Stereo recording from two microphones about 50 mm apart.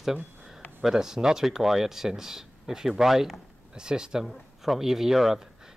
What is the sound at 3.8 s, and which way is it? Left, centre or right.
Speech, centre.